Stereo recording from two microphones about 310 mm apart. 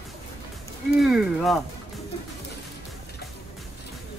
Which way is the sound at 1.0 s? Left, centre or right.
Centre.